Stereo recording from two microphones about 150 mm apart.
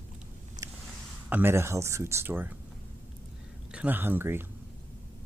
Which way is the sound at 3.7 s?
10° right (ahead or behind).